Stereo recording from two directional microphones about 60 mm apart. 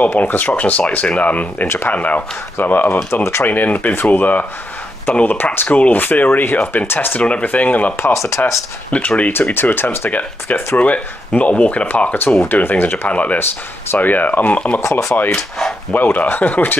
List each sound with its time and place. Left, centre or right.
0.0 s speech: left
7.2 s speech: left
8.0 s speech: left
8.9 s speech: left
9.3 s speech: left
10.8 s speech: left
13.1 s speech: left
14.8 s speech: left
15.9 s speech: left